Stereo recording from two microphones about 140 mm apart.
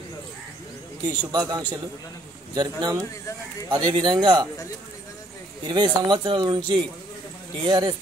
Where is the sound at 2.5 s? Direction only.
30° right (ahead or behind).